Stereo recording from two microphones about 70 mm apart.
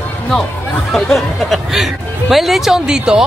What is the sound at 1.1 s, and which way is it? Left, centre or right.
Speech, centre.